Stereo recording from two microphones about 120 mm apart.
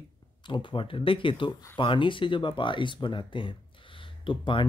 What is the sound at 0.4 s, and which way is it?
Speech, 45° left (ahead or behind).